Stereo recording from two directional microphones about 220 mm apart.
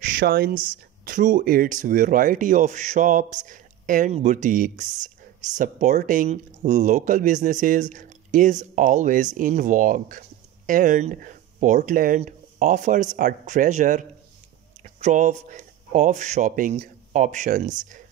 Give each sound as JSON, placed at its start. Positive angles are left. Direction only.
{"t": 0.0, "sound": "speech", "side_deg": -40}